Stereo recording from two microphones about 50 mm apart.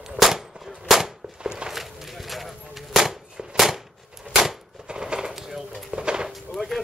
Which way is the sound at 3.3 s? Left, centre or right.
Centre.